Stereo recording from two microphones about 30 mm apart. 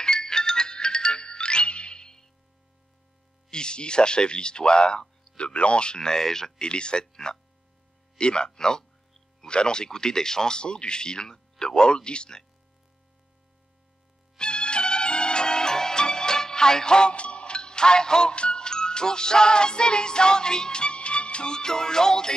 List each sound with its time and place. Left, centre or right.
0.0 s music: left
3.4 s speech: left
5.9 s speech: centre
6.6 s speech: left
7.1 s speech: left
8.2 s speech: left
14.4 s music: left
17.1 s music: left